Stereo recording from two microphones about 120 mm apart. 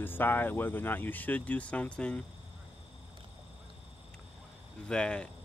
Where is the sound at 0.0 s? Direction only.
15° left (ahead or behind).